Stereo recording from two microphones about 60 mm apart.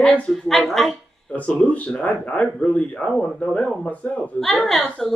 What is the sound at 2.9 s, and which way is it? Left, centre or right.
Speech, centre.